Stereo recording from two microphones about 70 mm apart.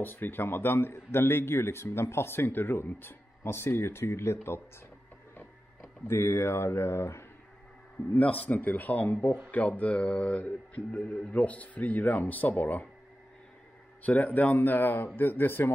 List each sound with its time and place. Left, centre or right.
0.0 s a man's voice: left
6.0 s a man's voice: left
8.1 s mantra: left
14.0 s mantra: left